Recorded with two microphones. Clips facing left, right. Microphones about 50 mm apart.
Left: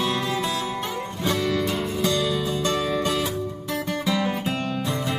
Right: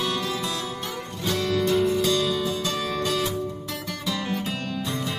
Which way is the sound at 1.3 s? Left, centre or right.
Left.